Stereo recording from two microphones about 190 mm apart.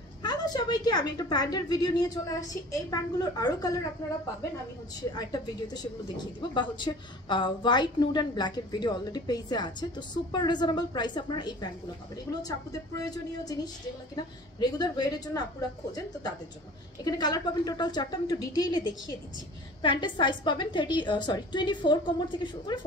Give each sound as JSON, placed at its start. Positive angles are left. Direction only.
{"t": 0.2, "sound": "speech", "side_deg": 20}
{"t": 5.1, "sound": "speech", "side_deg": 20}
{"t": 17.0, "sound": "speech", "side_deg": 20}